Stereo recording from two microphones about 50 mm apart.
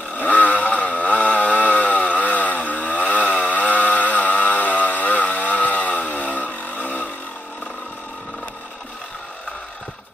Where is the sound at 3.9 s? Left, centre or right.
Left.